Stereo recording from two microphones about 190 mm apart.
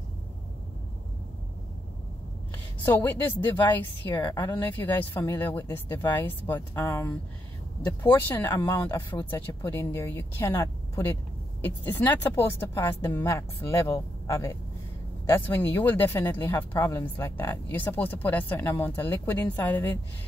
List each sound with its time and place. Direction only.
2.5 s speech: 10° left (ahead or behind)
4.6 s speech: 10° left (ahead or behind)